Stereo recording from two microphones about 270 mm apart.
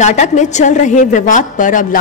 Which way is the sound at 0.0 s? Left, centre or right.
Left.